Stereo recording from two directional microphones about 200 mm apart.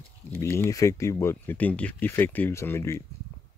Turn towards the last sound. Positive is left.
turn(degrees=15)  # may be behind; listen again after turning